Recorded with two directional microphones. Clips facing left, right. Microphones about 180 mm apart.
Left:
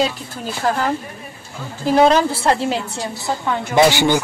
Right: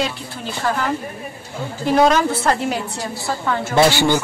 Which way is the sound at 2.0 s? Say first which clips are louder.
Left 1 dB; 30° left (ahead or behind).